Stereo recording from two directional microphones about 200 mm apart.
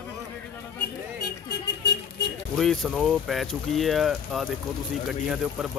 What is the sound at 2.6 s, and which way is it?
Speech, centre (ahead or behind).